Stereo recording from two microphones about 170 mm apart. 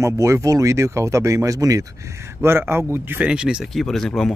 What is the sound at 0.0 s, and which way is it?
Speech, 15° right (ahead or behind).